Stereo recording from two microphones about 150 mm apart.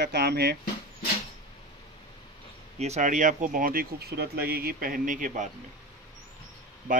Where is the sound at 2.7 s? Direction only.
45° right (ahead or behind).